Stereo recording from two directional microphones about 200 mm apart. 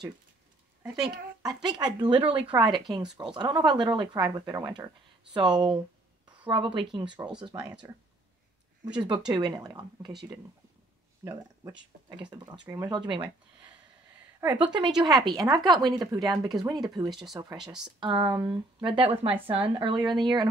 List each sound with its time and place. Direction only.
1.4 s speech: 20° right (ahead or behind)
8.8 s speech: 20° right (ahead or behind)
11.2 s speech: 20° right (ahead or behind)
14.5 s speech: 20° right (ahead or behind)